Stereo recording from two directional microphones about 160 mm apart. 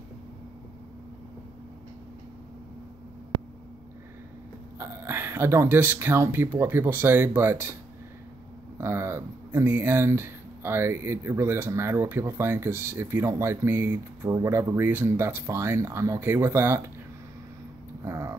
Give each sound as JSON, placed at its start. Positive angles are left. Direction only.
{"t": 4.7, "sound": "speech", "side_deg": -15}
{"t": 8.7, "sound": "speech", "side_deg": -15}
{"t": 18.0, "sound": "a sound", "side_deg": -20}